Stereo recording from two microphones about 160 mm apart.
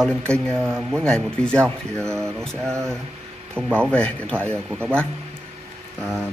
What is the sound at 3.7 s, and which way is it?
Speech, 5° left (ahead or behind).